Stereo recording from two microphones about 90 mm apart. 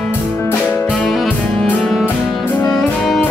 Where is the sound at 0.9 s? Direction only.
10° left (ahead or behind).